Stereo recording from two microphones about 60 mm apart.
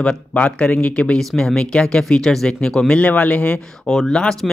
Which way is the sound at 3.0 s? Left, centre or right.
Left.